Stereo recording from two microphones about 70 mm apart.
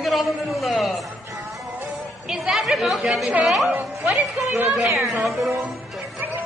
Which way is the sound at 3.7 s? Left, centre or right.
Right.